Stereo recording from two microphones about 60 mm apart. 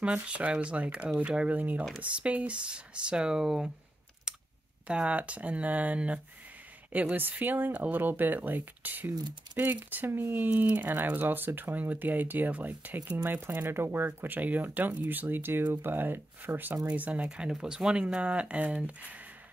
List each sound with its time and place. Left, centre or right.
0.0 s speech: centre
4.8 s speech: right
16.8 s speech: right
17.5 s speech: centre